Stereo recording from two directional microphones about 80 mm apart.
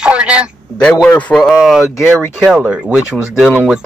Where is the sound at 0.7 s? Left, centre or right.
Centre.